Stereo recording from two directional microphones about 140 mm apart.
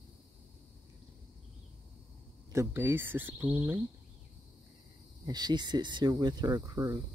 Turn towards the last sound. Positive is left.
turn(degrees=-25)  # may be behind; listen again after turning